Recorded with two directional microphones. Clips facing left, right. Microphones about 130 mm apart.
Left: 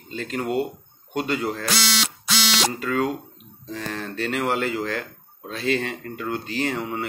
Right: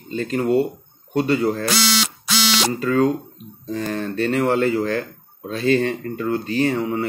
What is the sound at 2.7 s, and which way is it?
Speech, 5° left (ahead or behind).